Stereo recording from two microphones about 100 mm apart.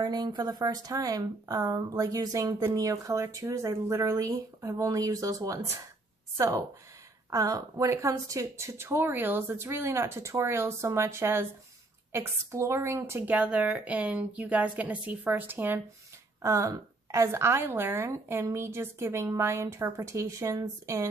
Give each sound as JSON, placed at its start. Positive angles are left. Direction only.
{"t": 0.0, "sound": "a woman's voice", "side_deg": -45}
{"t": 16.4, "sound": "a woman's voice", "side_deg": -35}